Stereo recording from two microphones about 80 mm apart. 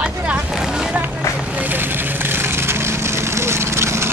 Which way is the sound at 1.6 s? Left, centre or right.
Right.